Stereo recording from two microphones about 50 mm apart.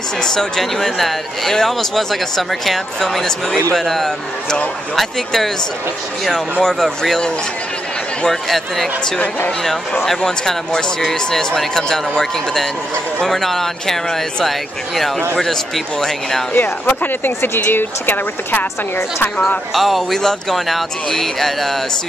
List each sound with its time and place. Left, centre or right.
0.2 s speech: centre
6.6 s speech: centre
13.2 s speech: centre
16.5 s speech: left
19.7 s speech: centre